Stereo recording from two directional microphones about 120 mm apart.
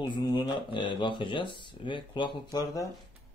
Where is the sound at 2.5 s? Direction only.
30° left (ahead or behind).